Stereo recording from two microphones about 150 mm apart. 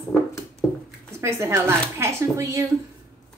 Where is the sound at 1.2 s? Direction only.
20° right (ahead or behind).